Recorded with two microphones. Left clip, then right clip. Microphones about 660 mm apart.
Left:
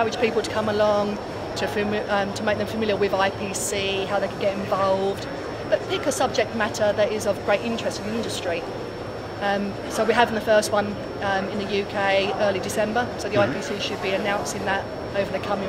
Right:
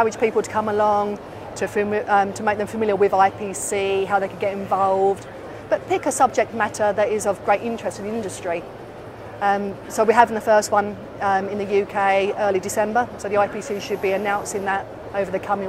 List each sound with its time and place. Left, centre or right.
0.0 s a woman's voice: right
6.0 s a woman's voice: right
9.4 s a woman's voice: right